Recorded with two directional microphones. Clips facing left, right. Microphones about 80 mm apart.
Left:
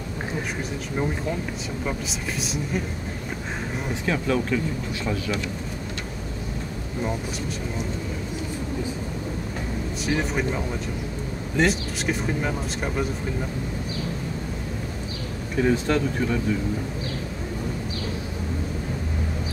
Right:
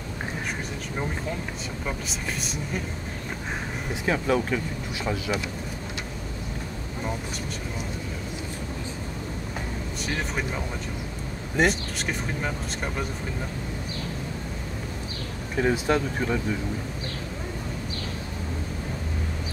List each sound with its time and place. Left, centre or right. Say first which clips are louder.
1.9 s speech: left 1 dB; centre
4.0 s speech: right 1 dB; centre
9.9 s speech: left 5 dB; centre
15.5 s speech: left 1 dB; centre